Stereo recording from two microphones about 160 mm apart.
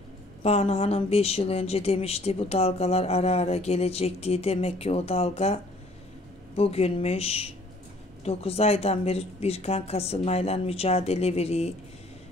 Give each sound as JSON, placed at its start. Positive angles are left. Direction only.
{"t": 0.4, "sound": "speech", "side_deg": 40}